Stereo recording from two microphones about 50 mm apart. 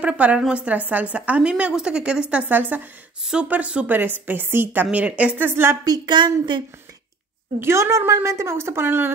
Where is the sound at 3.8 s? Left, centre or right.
Right.